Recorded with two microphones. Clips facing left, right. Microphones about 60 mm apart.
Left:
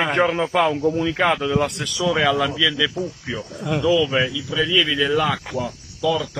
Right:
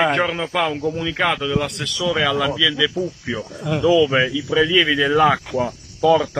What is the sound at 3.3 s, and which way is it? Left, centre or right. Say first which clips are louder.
Speech: even; centre.